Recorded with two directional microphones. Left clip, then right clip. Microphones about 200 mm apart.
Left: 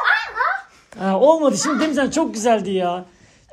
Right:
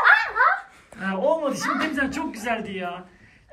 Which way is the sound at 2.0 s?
25° left (ahead or behind).